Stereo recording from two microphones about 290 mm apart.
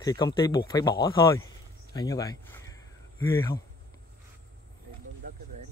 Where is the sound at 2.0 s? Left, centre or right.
Centre.